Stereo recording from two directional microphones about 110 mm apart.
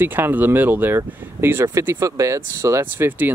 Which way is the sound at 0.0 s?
20° right (ahead or behind).